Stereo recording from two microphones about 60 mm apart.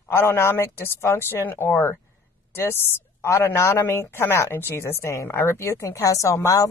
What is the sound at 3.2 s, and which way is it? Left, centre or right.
A woman's voice, left.